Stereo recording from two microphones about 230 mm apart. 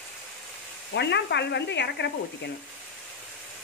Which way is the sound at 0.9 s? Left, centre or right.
Left.